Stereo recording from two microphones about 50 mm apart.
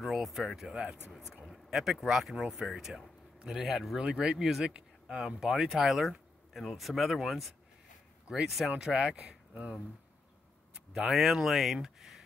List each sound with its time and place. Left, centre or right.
0.0 s speech: centre
4.0 s speech: centre
8.7 s speech: centre
11.1 s speech: centre